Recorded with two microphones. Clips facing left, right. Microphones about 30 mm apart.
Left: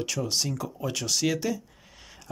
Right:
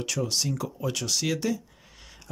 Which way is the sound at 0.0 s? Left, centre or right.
Centre.